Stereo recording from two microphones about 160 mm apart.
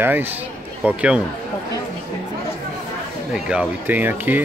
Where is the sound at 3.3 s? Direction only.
5° right (ahead or behind).